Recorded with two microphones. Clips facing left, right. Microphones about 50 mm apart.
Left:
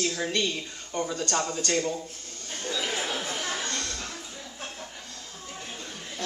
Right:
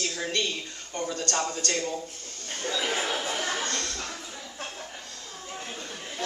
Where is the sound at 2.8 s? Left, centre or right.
Centre.